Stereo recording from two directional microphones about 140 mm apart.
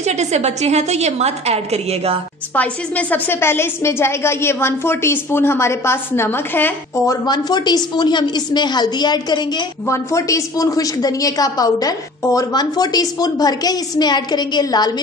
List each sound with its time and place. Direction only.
0.0 s a woman's voice: 55° right (ahead or behind)
2.5 s a woman's voice: 10° left (ahead or behind)
7.2 s a woman's voice: 30° left (ahead or behind)